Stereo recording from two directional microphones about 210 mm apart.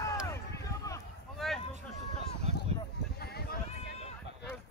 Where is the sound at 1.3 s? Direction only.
Centre (ahead or behind).